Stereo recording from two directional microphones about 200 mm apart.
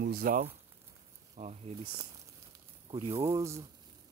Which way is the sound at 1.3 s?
30° right (ahead or behind).